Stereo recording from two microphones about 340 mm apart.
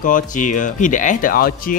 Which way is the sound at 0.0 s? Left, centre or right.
Left.